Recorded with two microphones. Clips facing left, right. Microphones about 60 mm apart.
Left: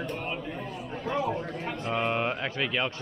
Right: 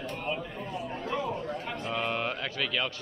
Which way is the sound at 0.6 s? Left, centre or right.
Centre.